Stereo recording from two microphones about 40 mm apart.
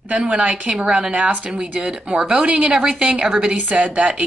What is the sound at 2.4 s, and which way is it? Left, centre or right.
Speech, right.